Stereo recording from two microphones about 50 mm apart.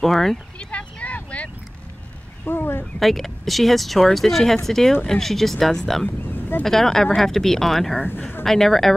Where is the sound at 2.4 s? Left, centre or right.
Left.